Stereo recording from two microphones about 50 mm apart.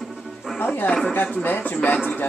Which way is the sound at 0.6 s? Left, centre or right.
Left.